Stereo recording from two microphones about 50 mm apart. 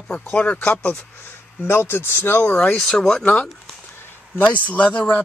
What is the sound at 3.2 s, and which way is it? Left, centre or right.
Speech, left.